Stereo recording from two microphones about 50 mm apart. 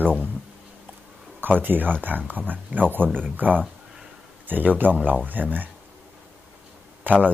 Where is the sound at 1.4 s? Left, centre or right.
Right.